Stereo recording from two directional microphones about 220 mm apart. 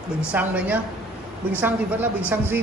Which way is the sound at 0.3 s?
5° right (ahead or behind).